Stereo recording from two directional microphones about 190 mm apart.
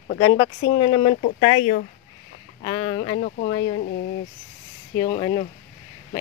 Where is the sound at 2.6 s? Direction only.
25° left (ahead or behind).